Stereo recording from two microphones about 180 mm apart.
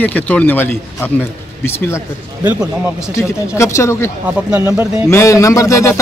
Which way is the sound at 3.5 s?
15° left (ahead or behind).